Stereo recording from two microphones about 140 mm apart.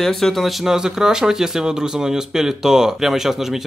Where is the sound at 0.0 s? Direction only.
Centre (ahead or behind).